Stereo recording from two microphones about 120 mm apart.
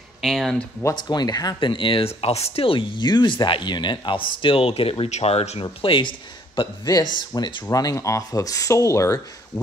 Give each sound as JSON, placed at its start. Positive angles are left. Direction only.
{"t": 0.2, "sound": "speech", "side_deg": 0}
{"t": 0.9, "sound": "speech", "side_deg": 35}